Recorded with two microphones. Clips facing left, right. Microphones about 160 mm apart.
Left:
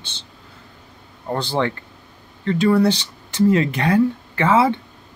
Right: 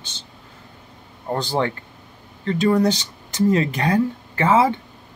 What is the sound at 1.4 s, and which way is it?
Speech, 40° right (ahead or behind).